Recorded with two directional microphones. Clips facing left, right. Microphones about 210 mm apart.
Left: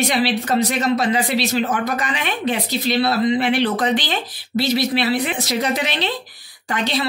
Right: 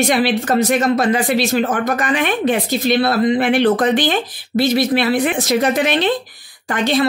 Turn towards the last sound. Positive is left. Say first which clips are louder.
# right 5 dB
turn(degrees=-50)  # may be behind; listen again after turning